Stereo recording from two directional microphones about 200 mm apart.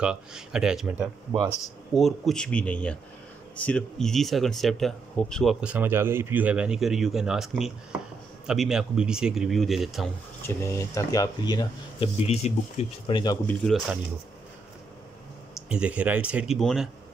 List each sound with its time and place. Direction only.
0.0 s speech: 5° right (ahead or behind)
10.4 s speech: 15° left (ahead or behind)
12.4 s speech: 35° left (ahead or behind)
13.1 s speech: 20° left (ahead or behind)
13.5 s speech: centre (ahead or behind)
15.7 s speech: 5° right (ahead or behind)